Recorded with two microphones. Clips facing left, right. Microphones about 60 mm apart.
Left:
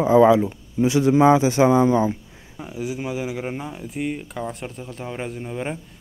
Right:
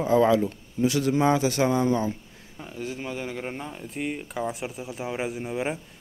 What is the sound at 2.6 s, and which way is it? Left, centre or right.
Speech, centre.